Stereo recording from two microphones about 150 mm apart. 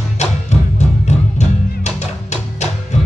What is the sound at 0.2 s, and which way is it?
Music, 50° left (ahead or behind).